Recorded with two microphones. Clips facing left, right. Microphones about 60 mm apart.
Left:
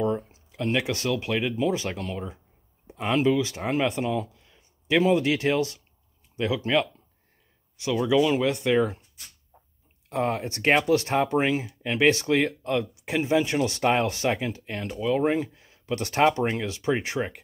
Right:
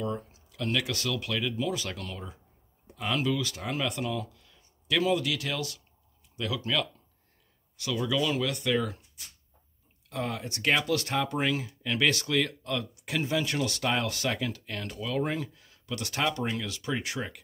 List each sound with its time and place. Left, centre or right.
0.0 s speech: left